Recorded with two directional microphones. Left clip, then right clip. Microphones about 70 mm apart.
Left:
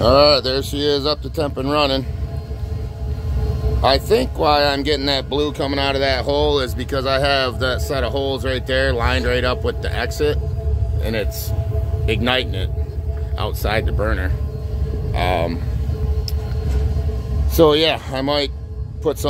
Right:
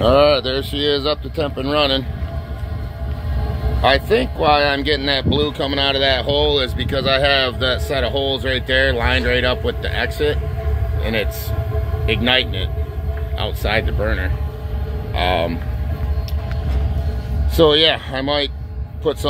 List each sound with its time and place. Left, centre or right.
0.0 s speech: left
3.8 s speech: left
6.2 s speech: left; by 9.8 s centre
9.8 s speech: left
12.1 s speech: left
13.9 s speech: centre
17.6 s speech: left